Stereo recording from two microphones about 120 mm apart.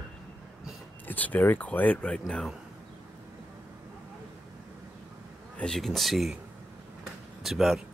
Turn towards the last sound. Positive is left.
turn(degrees=0)  # may be behind; listen again after turning